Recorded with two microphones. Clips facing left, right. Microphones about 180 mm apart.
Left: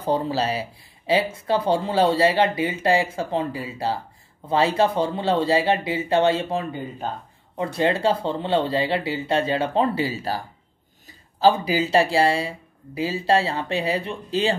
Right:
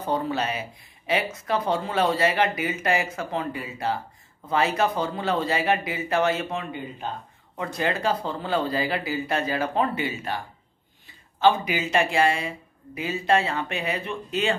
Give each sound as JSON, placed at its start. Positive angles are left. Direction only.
{"t": 0.0, "sound": "speech", "side_deg": 30}